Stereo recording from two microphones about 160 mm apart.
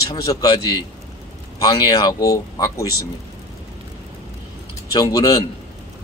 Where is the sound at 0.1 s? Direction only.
25° left (ahead or behind).